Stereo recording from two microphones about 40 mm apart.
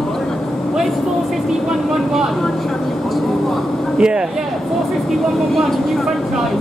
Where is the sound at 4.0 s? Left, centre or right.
Right.